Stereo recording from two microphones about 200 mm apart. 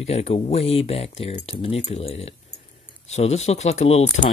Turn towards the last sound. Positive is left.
turn(degrees=35)  # may be behind; listen again after turning